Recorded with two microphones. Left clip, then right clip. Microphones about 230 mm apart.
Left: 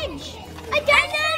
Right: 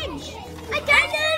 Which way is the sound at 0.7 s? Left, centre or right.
Centre.